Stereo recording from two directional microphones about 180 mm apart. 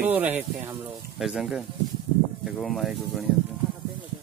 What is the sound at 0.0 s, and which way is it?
Speech, 10° right (ahead or behind).